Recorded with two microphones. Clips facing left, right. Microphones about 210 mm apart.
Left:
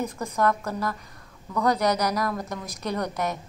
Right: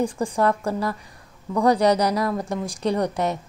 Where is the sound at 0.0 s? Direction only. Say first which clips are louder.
Right 4 dB; 30° right (ahead or behind).